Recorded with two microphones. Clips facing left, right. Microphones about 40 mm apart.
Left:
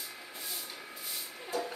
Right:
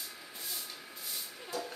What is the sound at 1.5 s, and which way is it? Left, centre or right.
Music, centre.